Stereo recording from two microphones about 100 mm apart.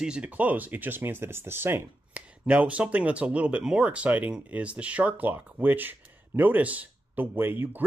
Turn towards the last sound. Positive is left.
turn(degrees=-20)  # may be behind; listen again after turning